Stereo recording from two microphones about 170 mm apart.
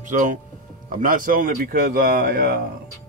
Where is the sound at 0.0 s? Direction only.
50° right (ahead or behind).